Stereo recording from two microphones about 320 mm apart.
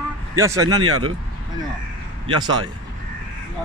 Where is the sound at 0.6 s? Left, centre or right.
Right.